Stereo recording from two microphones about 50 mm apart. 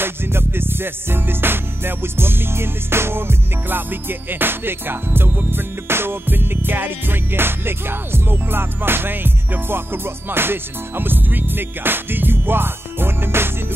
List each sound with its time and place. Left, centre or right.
0.0 s music: right